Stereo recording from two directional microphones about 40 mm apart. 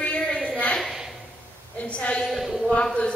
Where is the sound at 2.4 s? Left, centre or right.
Centre.